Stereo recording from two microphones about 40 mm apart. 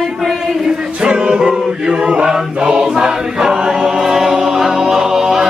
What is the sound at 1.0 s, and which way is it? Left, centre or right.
A capella, right.